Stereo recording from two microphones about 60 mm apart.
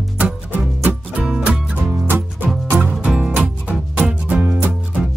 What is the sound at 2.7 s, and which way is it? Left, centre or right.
Music, right.